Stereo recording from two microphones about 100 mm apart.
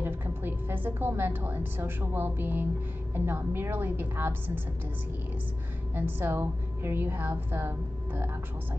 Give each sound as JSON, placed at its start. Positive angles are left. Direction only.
{"t": 0.0, "sound": "a woman's voice", "side_deg": -20}
{"t": 5.9, "sound": "a woman's voice", "side_deg": -20}